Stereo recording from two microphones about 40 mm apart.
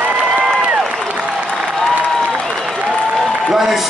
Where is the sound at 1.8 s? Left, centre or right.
Centre.